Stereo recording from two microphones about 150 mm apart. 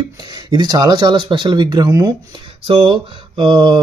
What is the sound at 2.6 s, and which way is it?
Mantra, 35° right (ahead or behind).